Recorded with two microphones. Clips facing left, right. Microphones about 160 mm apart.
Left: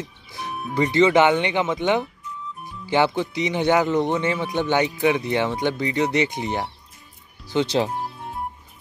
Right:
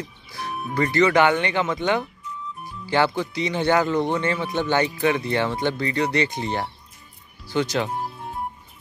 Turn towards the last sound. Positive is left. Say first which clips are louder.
# left 2 dB
turn(degrees=25)  # may be behind; listen again after turning